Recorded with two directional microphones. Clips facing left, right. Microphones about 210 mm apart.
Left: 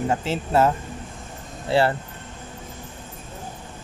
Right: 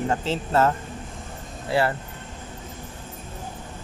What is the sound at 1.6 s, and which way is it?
Speech, 30° left (ahead or behind).